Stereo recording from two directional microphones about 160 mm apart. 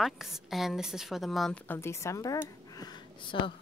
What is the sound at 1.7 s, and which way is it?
A woman's voice, 15° left (ahead or behind).